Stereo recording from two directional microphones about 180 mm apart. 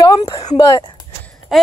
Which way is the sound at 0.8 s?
25° left (ahead or behind).